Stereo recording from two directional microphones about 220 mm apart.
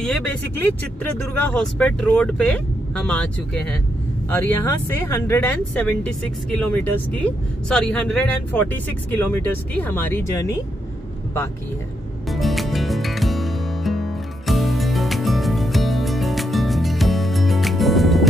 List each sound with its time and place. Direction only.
0.0 s speech: 5° left (ahead or behind)
12.3 s music: centre (ahead or behind)